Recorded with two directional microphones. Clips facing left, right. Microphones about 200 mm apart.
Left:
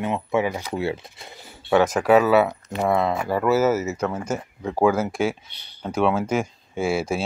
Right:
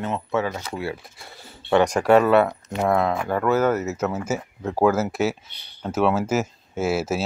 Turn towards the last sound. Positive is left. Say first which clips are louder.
# even
turn(degrees=-5)  # may be behind; listen again after turning